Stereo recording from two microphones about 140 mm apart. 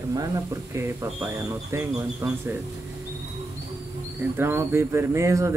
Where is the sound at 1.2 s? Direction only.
20° right (ahead or behind).